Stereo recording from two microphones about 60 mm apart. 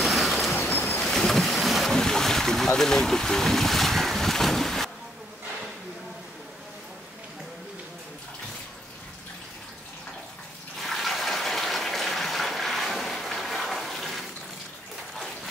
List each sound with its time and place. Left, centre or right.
0.0 s waves: centre
0.6 s boat: left
0.9 s boat: centre
10.8 s bathtub: centre